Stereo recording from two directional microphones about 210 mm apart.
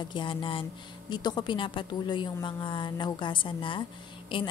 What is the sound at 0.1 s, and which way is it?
A woman's voice, 25° left (ahead or behind).